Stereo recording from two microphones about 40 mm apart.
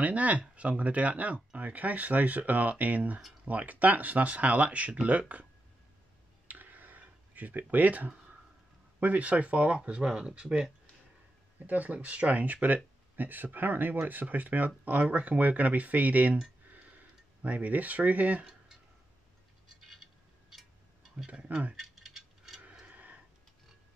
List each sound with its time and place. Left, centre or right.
0.0 s speech: right
6.4 s a sound: right
9.0 s speech: right
11.6 s speech: right
17.4 s speech: right
18.4 s a sound: centre
19.8 s a sound: centre
21.3 s speech: right
21.7 s rattle: centre
22.8 s tick-tock: right